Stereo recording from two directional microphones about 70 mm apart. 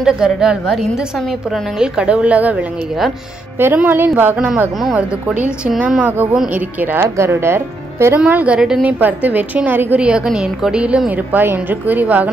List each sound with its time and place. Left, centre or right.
0.0 s a woman's voice: centre; by 7.1 s right
7.2 s speech: right
8.3 s a woman's voice: right
9.9 s a woman's voice: centre
11.1 s a woman's voice: right